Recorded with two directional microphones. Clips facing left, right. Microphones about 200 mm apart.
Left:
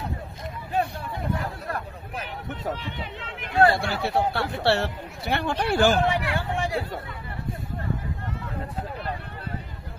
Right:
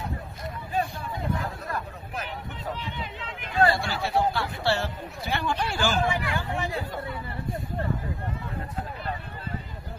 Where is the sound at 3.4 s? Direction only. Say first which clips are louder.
Left 3 dB; 60° left (ahead or behind); by 6.7 s 85° left.